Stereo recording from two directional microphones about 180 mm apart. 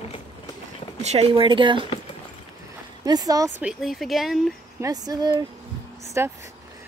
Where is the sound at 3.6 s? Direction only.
5° right (ahead or behind).